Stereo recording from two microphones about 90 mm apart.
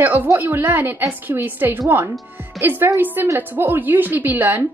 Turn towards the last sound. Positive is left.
turn(degrees=-20)  # may be behind; listen again after turning